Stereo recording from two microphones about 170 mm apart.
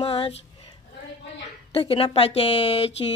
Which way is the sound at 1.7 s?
35° left (ahead or behind).